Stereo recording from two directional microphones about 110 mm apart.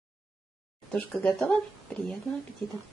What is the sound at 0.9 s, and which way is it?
Speech, 10° left (ahead or behind).